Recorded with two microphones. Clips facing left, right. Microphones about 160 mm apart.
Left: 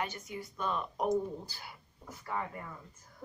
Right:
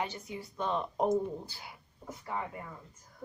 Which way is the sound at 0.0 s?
25° right (ahead or behind).